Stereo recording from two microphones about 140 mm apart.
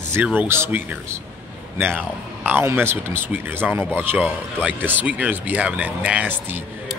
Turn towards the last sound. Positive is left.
turn(degrees=-10)  # may be behind; listen again after turning